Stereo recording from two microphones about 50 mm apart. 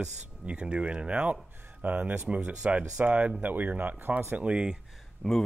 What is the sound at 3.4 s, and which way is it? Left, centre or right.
Speech, right.